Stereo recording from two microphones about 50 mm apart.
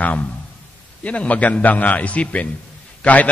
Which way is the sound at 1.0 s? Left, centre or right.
Left.